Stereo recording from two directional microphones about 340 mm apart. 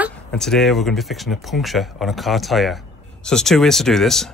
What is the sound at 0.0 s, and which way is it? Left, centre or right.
Speech, centre.